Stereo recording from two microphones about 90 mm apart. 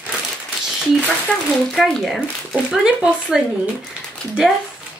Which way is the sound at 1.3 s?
15° left (ahead or behind).